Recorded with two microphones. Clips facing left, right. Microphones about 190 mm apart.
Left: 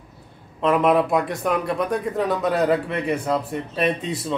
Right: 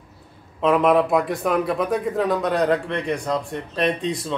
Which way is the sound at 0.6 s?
Centre (ahead or behind).